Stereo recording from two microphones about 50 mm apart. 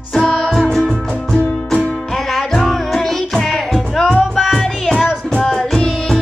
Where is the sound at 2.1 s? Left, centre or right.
Centre.